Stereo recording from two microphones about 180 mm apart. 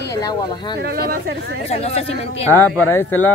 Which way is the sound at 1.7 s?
35° left (ahead or behind).